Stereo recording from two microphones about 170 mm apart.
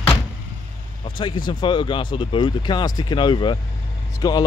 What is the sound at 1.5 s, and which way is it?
Speech, 30° left (ahead or behind).